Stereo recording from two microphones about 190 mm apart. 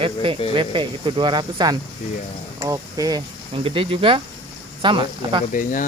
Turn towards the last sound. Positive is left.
turn(degrees=45)  # may be behind; listen again after turning